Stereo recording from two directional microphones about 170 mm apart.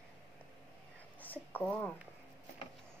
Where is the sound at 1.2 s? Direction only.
10° left (ahead or behind).